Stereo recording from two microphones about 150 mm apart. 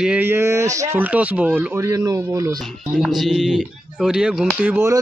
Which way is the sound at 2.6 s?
Centre (ahead or behind).